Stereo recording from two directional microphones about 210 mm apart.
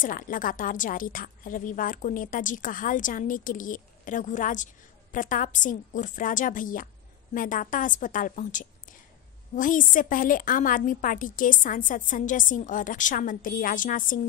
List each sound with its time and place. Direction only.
0.0 s a woman's voice: 40° left (ahead or behind)